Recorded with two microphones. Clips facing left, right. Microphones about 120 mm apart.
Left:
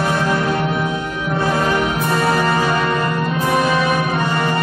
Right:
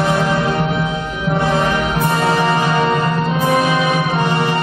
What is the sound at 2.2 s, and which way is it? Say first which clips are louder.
Music: right 1 dB; 20° right (ahead or behind).